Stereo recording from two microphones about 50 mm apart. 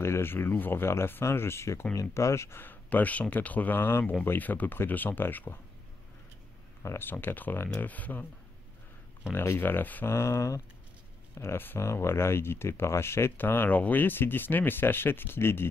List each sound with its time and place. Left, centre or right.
0.0 s speech: left
2.0 s speech: left
2.6 s speech: left
7.0 s speech: left
7.7 s speech: left
9.3 s speech: left
10.0 s speech: left
11.3 s speech: left
13.4 s speech: left